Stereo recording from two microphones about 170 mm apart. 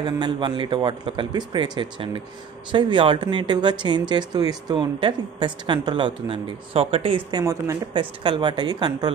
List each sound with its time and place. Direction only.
0.0 s speech: 25° right (ahead or behind)